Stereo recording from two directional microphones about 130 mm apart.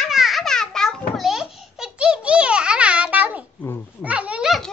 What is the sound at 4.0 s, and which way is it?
Dog, 10° right (ahead or behind).